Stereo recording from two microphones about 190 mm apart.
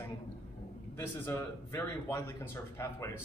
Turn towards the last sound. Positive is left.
turn(degrees=15)  # may be behind; listen again after turning